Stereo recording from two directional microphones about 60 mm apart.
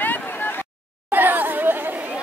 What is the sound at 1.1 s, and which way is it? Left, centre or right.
Chatter, right.